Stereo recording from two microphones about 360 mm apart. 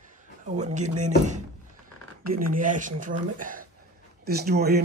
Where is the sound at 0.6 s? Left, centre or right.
Centre.